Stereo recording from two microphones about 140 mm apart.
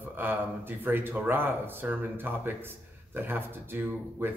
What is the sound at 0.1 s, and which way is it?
A man's voice, 15° right (ahead or behind).